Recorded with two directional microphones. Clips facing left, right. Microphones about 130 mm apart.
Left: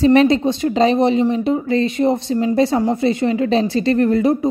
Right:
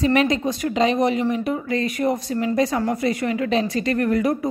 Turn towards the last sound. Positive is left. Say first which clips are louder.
# left 5 dB
turn(degrees=30)  # may be behind; listen again after turning